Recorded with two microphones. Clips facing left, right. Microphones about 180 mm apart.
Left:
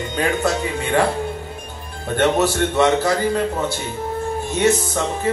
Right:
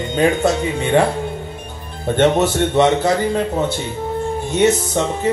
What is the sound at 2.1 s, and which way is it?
Speech, 25° right (ahead or behind).